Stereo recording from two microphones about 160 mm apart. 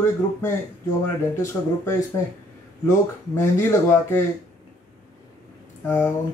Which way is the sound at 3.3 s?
15° left (ahead or behind).